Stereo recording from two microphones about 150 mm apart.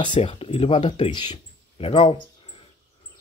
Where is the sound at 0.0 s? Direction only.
35° left (ahead or behind).